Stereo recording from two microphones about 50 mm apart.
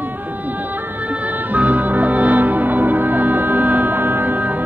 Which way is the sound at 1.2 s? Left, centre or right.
Right.